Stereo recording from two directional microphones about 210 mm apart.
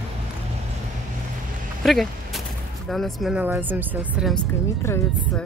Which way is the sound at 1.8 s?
Centre (ahead or behind).